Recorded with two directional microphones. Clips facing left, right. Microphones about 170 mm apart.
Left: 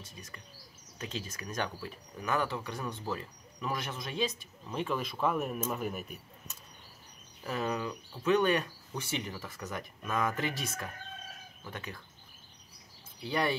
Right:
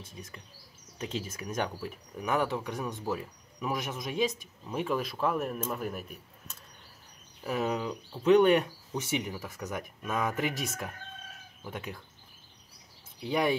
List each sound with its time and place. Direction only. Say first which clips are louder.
0.9 s speech: right 4 dB; 10° right (ahead or behind)
7.4 s speech: right 3 dB; 10° right (ahead or behind)
13.2 s speech: right 3 dB; 15° right (ahead or behind)